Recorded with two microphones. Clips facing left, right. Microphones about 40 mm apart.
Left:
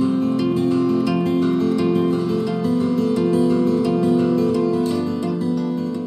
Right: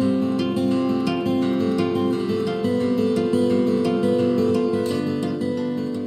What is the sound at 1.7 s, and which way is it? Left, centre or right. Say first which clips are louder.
Music: left 3 dB; centre.